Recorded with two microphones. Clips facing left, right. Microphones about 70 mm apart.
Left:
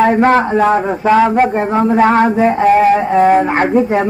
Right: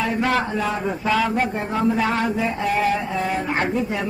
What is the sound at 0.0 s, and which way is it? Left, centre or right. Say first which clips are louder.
A man's voice: left 11 dB; left.